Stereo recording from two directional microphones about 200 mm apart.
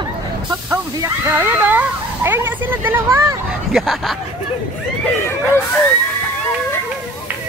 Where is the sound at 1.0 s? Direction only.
10° right (ahead or behind).